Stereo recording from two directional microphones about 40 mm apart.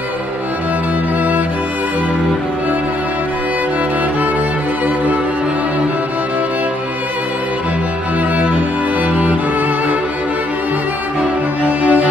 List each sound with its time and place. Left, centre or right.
4.8 s music: right
9.1 s music: right
11.6 s music: right